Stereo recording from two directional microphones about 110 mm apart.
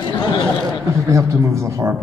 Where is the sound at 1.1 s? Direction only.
30° right (ahead or behind).